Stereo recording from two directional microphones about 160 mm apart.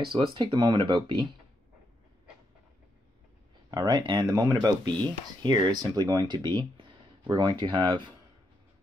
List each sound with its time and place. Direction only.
0.0 s speech: 30° right (ahead or behind)
3.7 s speech: 25° right (ahead or behind)